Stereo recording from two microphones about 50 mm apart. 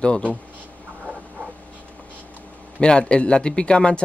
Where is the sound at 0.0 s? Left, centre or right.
Centre.